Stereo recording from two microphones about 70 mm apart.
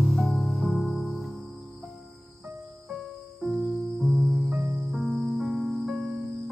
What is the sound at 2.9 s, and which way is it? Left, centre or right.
Music, centre.